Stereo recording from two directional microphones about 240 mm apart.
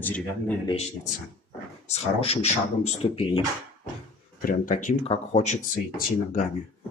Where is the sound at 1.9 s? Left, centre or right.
Left.